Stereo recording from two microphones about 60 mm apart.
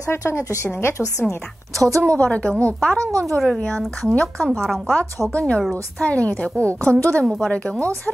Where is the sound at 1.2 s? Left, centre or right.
Centre.